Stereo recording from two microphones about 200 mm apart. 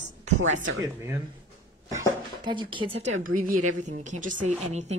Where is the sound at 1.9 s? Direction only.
20° right (ahead or behind); by 4.9 s 35° right (ahead or behind).